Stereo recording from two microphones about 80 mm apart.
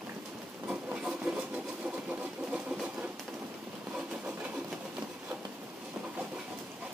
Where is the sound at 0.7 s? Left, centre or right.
Centre.